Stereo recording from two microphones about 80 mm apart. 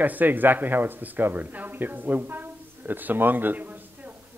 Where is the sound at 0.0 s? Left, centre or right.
Right.